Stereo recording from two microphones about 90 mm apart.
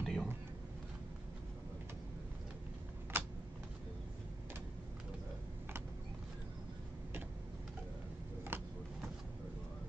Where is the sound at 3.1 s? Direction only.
20° right (ahead or behind).